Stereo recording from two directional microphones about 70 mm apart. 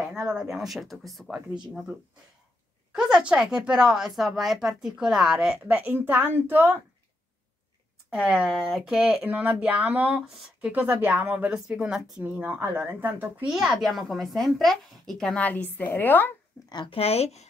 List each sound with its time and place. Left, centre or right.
0.1 s a woman's voice: centre
2.9 s speech: centre; by 6.8 s right
8.1 s speech: centre
9.2 s speech: centre
10.7 s speech: right
12.2 s speech: right
13.5 s a woman's voice: centre
15.3 s a woman's voice: left
16.6 s speech: left